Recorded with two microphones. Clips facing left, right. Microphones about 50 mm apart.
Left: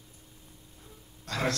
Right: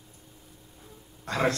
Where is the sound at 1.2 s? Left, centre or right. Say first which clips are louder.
Right 4 dB; right.